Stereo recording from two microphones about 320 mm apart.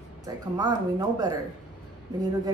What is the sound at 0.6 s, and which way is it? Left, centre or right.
Speech, centre.